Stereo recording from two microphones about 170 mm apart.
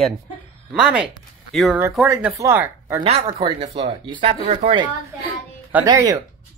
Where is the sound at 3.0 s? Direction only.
35° right (ahead or behind).